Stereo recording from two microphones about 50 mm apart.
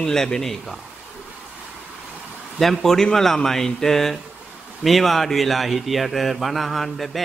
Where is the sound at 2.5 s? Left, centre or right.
Centre.